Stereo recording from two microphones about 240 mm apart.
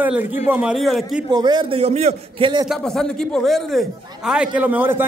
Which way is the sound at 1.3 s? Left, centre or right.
Centre.